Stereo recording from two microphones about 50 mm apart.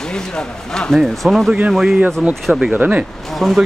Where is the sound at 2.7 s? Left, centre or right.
Right.